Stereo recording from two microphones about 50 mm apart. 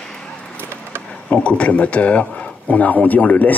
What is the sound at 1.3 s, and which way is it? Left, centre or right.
Speech, left.